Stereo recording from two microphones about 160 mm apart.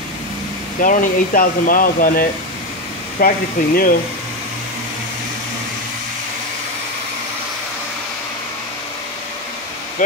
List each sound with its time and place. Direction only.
0.7 s speech: 55° left (ahead or behind)